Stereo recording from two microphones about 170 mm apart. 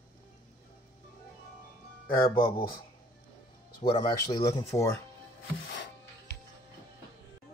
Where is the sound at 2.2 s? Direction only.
30° left (ahead or behind).